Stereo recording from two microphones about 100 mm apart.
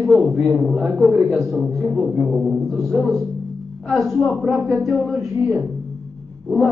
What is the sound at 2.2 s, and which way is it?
Speech, 15° right (ahead or behind).